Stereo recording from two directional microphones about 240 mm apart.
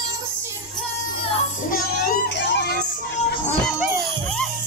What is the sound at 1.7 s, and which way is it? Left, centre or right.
Music, left.